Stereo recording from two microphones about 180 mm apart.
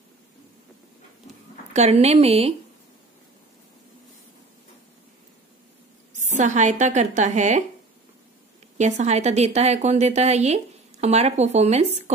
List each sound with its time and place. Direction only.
1.7 s a woman's voice: 35° right (ahead or behind)
6.3 s a woman's voice: 40° right (ahead or behind)
8.7 s a woman's voice: 40° right (ahead or behind)